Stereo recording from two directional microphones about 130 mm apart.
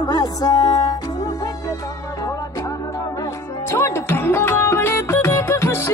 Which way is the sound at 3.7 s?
20° left (ahead or behind).